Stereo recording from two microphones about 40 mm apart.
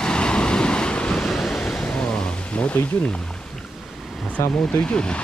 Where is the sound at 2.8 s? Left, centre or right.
Left.